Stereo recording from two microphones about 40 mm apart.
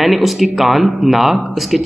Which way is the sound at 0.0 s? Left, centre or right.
Centre.